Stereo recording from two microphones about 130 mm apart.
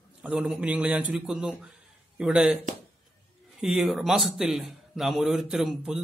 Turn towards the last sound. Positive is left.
turn(degrees=-5)  # may be behind; listen again after turning